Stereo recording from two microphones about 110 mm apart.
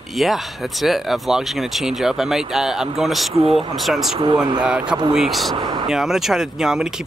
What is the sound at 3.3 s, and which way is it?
Speech, 60° right (ahead or behind).